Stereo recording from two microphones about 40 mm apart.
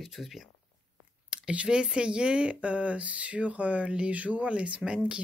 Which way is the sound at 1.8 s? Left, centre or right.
Right.